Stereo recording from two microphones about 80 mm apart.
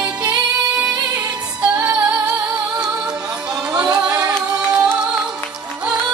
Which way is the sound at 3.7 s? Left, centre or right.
Right.